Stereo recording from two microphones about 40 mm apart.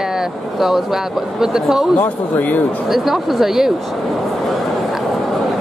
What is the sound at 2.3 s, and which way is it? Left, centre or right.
Speech, left.